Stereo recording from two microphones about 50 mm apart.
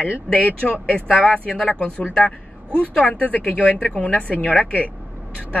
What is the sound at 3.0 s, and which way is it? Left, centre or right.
A woman's voice, left.